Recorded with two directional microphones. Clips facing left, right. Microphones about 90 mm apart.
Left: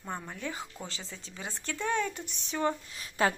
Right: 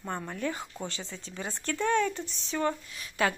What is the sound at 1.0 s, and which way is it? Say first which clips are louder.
Speech: right 4 dB; centre (ahead or behind).